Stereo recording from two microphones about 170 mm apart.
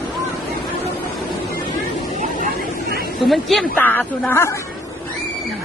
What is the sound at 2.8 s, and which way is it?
Chatter, 60° right (ahead or behind).